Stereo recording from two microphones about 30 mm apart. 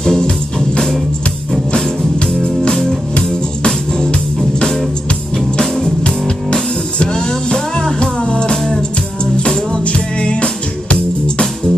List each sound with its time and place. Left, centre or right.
0.0 s music: centre
2.4 s music: left
6.0 s music: left
7.1 s music: left
9.7 s music: left